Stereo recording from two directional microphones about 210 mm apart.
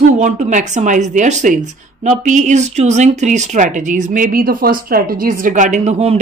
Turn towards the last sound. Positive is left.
turn(degrees=-30)  # may be behind; listen again after turning